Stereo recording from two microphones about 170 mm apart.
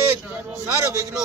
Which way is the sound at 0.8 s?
20° right (ahead or behind).